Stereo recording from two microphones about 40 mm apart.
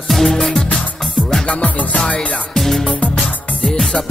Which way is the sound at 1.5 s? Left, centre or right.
Left.